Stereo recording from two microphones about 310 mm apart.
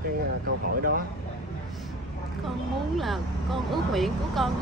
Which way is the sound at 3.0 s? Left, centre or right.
Centre.